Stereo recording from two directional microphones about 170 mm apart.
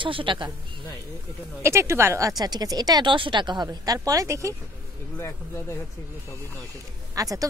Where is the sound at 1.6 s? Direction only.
15° right (ahead or behind).